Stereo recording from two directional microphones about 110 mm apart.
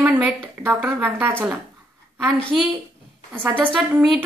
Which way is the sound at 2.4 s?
5° left (ahead or behind).